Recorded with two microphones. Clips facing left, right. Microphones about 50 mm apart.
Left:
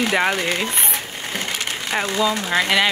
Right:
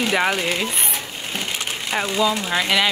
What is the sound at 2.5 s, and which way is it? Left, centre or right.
Speech, left.